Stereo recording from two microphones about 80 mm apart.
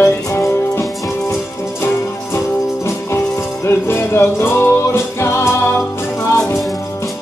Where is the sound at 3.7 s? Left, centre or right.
Left.